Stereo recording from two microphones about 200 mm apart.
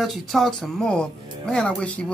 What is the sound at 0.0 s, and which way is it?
Speech, centre (ahead or behind).